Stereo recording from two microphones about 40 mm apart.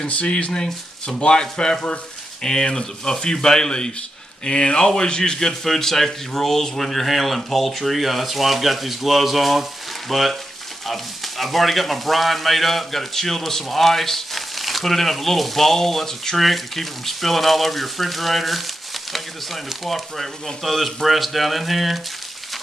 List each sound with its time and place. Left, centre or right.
0.0 s speech: left; by 22.0 s centre